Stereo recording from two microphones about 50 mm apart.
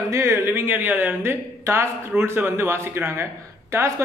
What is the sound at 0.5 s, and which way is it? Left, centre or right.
Speech, right.